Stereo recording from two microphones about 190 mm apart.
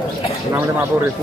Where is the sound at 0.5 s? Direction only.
10° right (ahead or behind).